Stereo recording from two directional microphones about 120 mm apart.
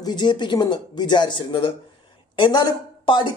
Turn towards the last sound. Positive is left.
turn(degrees=40)  # may be behind; listen again after turning